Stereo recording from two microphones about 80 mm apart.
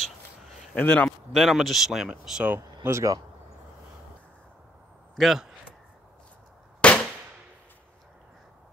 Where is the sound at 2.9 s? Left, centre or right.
Right.